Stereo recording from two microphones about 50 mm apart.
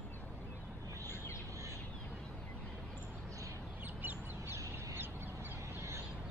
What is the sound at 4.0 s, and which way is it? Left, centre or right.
Duck, right.